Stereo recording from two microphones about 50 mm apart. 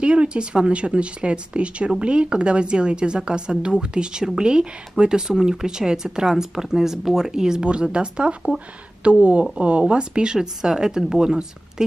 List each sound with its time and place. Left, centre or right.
0.0 s a woman's voice: right